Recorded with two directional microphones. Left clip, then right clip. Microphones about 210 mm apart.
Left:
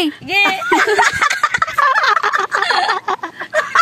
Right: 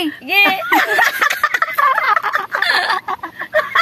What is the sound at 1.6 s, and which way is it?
Fowl, 45° left (ahead or behind).